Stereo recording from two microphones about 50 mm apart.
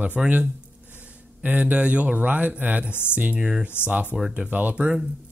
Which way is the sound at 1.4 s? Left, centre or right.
Right.